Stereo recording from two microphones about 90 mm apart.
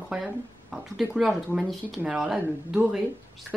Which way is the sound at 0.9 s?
5° right (ahead or behind).